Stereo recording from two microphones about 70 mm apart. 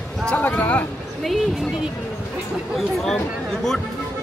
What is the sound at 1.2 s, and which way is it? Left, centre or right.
A man's voice, centre.